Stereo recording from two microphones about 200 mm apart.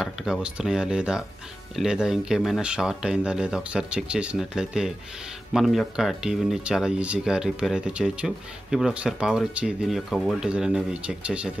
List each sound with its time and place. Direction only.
0.0 s speech: 5° right (ahead or behind)